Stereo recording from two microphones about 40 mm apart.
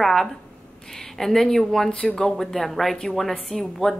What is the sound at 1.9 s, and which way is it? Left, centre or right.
Speech, left.